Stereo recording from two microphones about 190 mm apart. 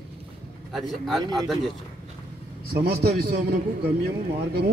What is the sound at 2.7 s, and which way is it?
A man's voice, 55° right (ahead or behind).